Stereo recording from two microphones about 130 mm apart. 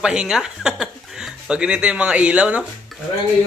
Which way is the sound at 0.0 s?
5° right (ahead or behind).